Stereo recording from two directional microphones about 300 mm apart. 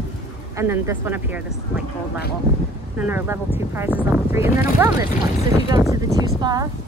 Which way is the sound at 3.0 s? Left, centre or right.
Centre.